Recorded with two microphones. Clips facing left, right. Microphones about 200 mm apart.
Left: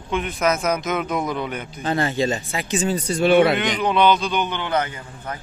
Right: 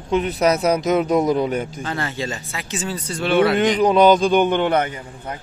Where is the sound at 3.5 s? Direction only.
35° right (ahead or behind).